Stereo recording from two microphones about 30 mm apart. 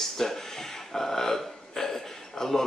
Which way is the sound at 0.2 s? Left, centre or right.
Centre.